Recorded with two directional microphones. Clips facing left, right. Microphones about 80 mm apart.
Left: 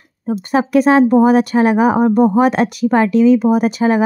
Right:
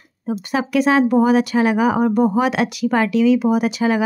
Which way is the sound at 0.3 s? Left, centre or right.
Left.